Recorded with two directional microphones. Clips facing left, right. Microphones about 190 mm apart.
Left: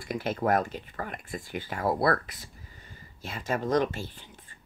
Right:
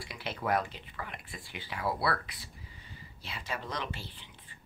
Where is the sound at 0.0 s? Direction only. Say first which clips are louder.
Left 8 dB; 45° left (ahead or behind).